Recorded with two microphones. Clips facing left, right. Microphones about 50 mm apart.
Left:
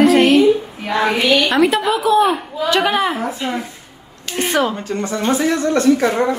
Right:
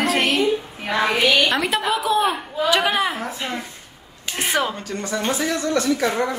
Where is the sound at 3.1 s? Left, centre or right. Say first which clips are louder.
Left 5 dB; centre.